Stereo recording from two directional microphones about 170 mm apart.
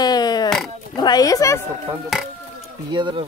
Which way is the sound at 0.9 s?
25° left (ahead or behind).